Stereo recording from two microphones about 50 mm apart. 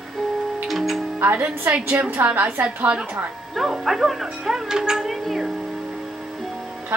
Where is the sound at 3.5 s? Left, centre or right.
Centre.